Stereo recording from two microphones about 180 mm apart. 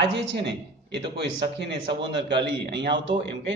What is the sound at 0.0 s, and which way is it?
A man's voice, 80° right.